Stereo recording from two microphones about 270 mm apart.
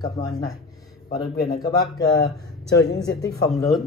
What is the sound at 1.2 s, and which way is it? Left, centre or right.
Speech, centre.